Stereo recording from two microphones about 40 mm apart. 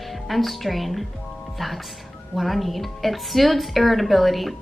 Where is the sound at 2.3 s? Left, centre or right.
Centre.